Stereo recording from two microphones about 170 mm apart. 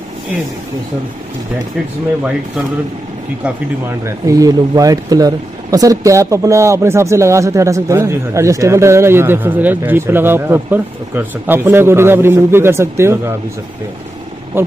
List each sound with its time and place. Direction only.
4.0 s speech: 20° right (ahead or behind)